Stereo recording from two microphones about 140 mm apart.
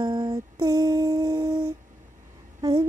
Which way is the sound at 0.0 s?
30° right (ahead or behind).